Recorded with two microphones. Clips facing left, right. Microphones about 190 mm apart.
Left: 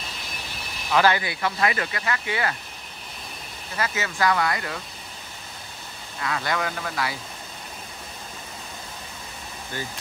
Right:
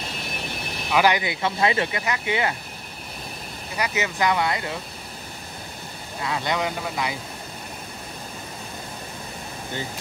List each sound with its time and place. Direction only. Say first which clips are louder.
0.9 s speech: even; 15° right (ahead or behind)
3.7 s speech: right 2 dB; 15° right (ahead or behind)
6.2 s speech: right 1 dB; 20° right (ahead or behind)